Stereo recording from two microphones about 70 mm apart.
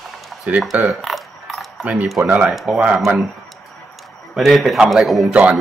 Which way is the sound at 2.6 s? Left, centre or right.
Centre.